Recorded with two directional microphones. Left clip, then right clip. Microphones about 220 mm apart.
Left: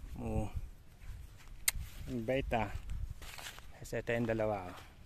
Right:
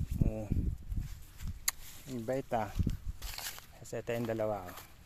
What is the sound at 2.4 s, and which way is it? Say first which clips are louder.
Speech: right 1 dB; 15° left (ahead or behind).